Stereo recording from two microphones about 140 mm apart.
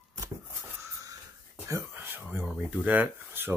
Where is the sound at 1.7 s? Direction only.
20° right (ahead or behind).